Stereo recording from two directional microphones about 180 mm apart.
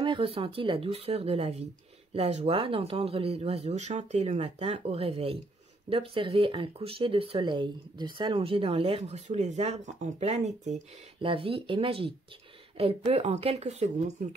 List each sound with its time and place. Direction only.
0.0 s speech: 30° right (ahead or behind)